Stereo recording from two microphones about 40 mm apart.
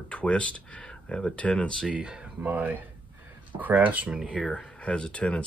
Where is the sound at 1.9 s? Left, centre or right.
Right.